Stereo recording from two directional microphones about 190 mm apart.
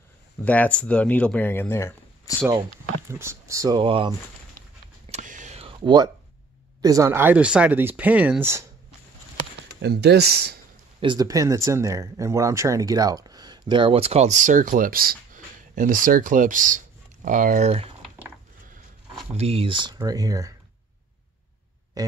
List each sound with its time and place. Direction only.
0.5 s speech: 5° left (ahead or behind)
3.1 s speech: 15° right (ahead or behind)
5.1 s a sound: 40° right (ahead or behind); by 6.0 s 25° right (ahead or behind)
6.8 s speech: 15° right (ahead or behind)
9.8 s speech: 60° right (ahead or behind)
11.0 s speech: 20° right (ahead or behind)
19.3 s speech: 30° right (ahead or behind)
22.0 s music: 20° right (ahead or behind)